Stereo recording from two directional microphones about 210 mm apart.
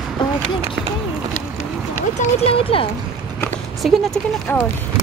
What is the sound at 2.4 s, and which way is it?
Speech, 25° left (ahead or behind).